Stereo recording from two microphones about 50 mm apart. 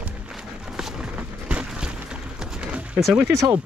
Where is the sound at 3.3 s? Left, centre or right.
Right.